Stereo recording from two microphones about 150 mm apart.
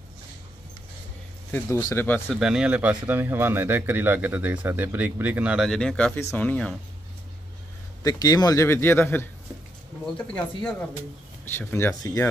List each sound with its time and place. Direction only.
1.5 s a man's voice: 15° left (ahead or behind)
2.2 s speech: 5° right (ahead or behind)
5.7 s a man's voice: 5° left (ahead or behind)
8.0 s a man's voice: 25° left (ahead or behind)